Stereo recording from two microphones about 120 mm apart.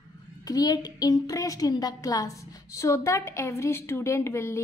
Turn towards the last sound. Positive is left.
turn(degrees=20)  # may be behind; listen again after turning